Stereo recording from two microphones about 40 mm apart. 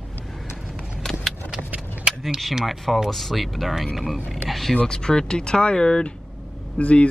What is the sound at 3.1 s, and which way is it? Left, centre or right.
Speech, centre.